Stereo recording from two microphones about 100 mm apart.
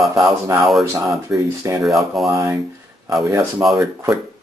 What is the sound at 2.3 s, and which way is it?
Speech, 30° right (ahead or behind).